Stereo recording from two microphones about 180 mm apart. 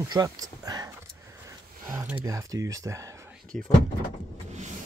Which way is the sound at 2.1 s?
20° right (ahead or behind).